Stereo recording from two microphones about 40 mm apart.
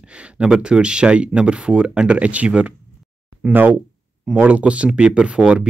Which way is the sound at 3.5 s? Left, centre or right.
Right.